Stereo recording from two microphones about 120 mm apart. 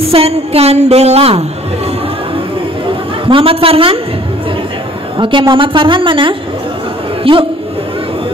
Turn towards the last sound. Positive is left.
turn(degrees=-45)  # may be behind; listen again after turning